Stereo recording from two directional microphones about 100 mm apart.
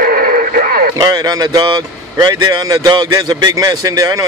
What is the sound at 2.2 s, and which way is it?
Speech, 45° right (ahead or behind).